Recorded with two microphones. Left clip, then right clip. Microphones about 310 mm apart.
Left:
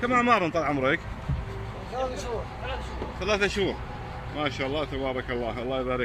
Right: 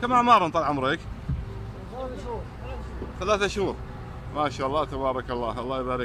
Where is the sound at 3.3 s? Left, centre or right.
Centre.